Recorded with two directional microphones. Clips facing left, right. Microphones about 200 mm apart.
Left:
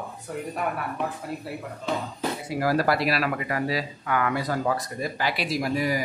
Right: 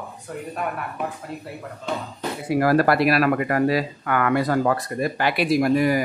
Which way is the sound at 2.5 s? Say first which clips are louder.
Right 6 dB; 60° right (ahead or behind).